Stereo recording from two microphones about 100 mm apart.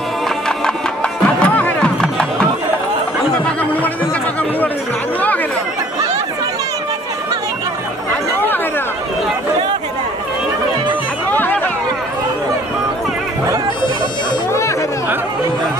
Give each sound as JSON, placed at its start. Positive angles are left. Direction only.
{"t": 1.2, "sound": "music", "side_deg": 10}
{"t": 11.3, "sound": "music", "side_deg": 20}